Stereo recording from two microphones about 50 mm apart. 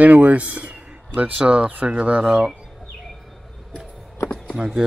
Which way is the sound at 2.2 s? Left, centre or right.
Centre.